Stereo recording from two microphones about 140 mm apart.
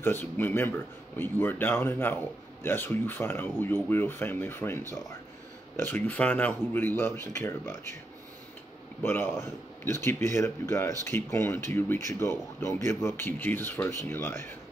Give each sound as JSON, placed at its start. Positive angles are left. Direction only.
{"t": 0.0, "sound": "speech", "side_deg": 15}
{"t": 9.0, "sound": "speech", "side_deg": 15}